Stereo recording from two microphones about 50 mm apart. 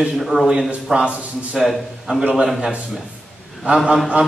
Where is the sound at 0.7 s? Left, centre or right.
Right.